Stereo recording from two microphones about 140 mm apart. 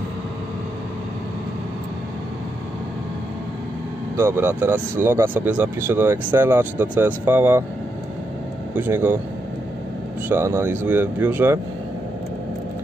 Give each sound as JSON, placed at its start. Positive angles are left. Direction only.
{"t": 4.2, "sound": "speech", "side_deg": -15}
{"t": 8.7, "sound": "speech", "side_deg": -15}
{"t": 10.2, "sound": "speech", "side_deg": -15}